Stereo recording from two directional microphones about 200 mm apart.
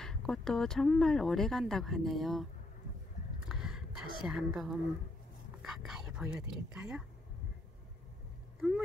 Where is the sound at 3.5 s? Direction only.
5° right (ahead or behind).